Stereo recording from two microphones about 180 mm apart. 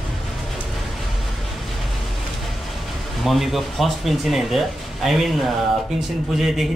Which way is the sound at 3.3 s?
Centre (ahead or behind).